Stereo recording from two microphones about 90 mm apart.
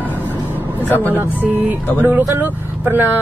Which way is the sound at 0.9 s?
20° left (ahead or behind).